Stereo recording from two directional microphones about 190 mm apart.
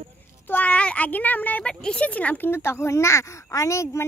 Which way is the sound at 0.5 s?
10° left (ahead or behind).